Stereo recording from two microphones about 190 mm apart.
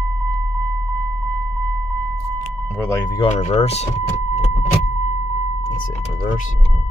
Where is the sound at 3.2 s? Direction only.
30° left (ahead or behind).